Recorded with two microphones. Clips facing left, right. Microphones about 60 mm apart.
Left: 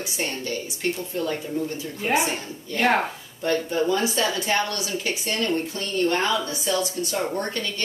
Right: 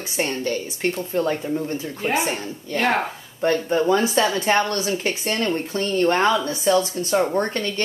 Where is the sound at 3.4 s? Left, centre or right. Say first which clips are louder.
Right 4 dB; right.